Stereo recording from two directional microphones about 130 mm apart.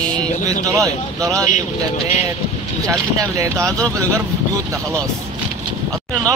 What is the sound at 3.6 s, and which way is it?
Speech, 5° left (ahead or behind).